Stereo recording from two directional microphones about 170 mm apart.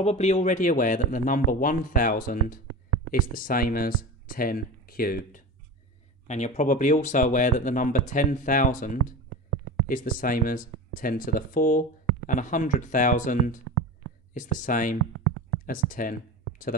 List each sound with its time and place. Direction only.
0.0 s speech: 40° left (ahead or behind); by 5.4 s 60° left (ahead or behind)
6.2 s speech: 45° left (ahead or behind)